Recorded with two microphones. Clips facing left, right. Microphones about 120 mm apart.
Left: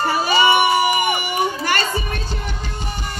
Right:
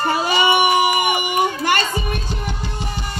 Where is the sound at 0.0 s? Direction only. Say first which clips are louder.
Left 1 dB; 20° right (ahead or behind).